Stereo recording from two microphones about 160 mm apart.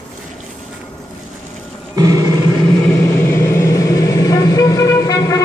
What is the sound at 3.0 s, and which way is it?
Vehicle, 15° left (ahead or behind).